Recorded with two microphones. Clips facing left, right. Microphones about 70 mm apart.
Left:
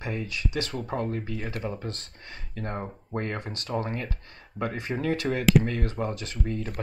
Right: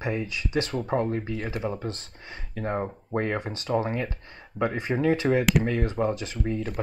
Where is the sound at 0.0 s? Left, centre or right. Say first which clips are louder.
Right 3 dB; centre.